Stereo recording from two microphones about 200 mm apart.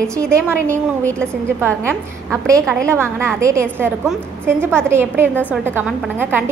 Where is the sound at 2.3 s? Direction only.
15° right (ahead or behind).